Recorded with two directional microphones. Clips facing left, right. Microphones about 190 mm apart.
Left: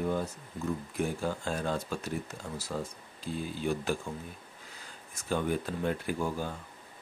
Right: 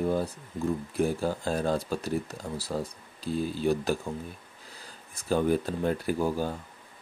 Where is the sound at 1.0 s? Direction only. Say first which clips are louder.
Right 5 dB; 35° right (ahead or behind).